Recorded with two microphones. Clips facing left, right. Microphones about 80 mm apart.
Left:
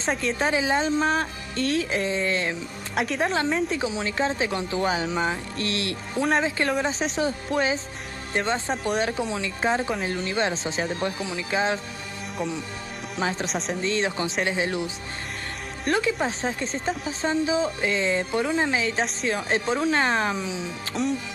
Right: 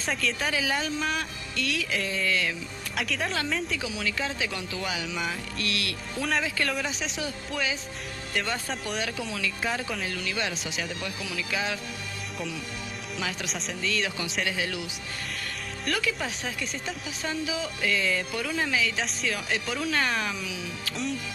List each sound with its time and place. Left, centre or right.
0.0 s a woman's voice: left
3.0 s a woman's voice: left
13.2 s a woman's voice: left
13.5 s speech: left
13.7 s a woman's voice: left
15.9 s speech: left
20.9 s a woman's voice: left